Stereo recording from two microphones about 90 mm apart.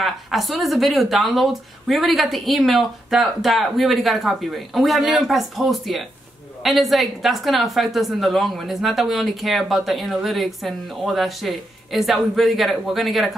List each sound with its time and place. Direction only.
0.0 s speech: centre (ahead or behind)